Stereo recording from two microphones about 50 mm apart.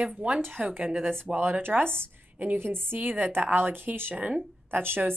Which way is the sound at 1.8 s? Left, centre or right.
Left.